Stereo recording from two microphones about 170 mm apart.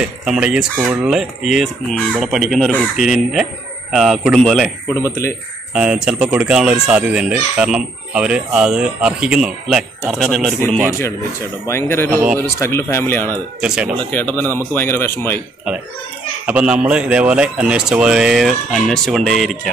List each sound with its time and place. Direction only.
0.0 s speech: 5° right (ahead or behind)
5.0 s speech: 15° left (ahead or behind)
5.8 s speech: 5° right (ahead or behind)
11.6 s speech: 15° left (ahead or behind)
13.6 s speech: 5° right (ahead or behind)
13.9 s speech: 10° left (ahead or behind)
16.4 s speech: 5° right (ahead or behind)